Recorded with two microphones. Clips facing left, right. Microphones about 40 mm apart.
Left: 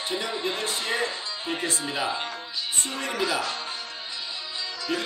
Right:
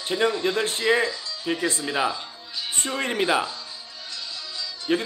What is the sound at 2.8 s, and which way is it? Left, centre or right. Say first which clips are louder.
Speech: right 6 dB; right.